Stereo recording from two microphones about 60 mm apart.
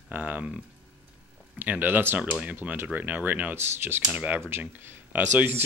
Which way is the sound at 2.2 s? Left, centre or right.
Right.